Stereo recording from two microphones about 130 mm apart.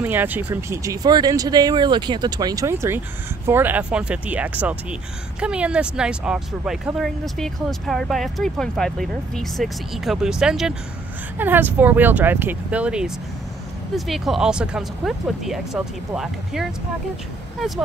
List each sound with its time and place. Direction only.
0.0 s speech: 15° right (ahead or behind)
11.3 s speech: 15° right (ahead or behind)
17.6 s speech: centre (ahead or behind)